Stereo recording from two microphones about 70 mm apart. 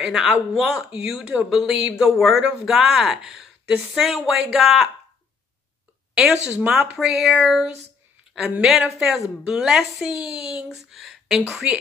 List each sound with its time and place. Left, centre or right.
0.0 s a woman's voice: centre
2.1 s a woman's voice: centre
6.1 s speech: centre
6.5 s speech: right
7.0 s a woman's voice: centre
8.8 s a woman's voice: centre